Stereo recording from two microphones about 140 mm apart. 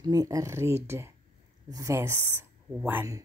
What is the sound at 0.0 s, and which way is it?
Speech, 30° right (ahead or behind).